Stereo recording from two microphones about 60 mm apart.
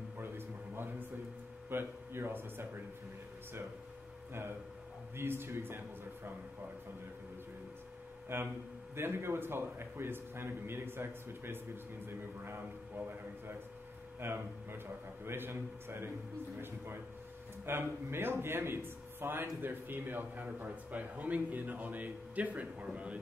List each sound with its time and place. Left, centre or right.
1.7 s speech: right
4.3 s a man's voice: right
8.3 s a man's voice: right
17.6 s a man's voice: right